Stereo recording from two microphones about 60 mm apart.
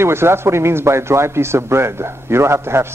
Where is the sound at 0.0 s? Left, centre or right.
Right.